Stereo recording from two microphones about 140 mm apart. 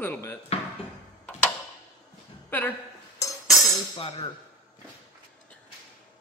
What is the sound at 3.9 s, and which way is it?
Speech, 40° left (ahead or behind).